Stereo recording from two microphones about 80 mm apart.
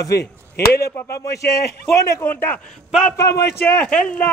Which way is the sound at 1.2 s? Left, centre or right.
Left.